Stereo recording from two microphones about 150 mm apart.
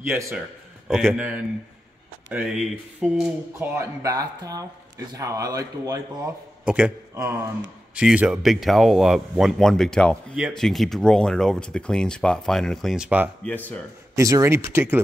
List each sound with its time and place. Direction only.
0.8 s speech: 5° right (ahead or behind)
3.5 s speech: 20° right (ahead or behind)
6.6 s a man's voice: 5° right (ahead or behind)
13.5 s speech: 10° left (ahead or behind)
14.1 s speech: 20° right (ahead or behind)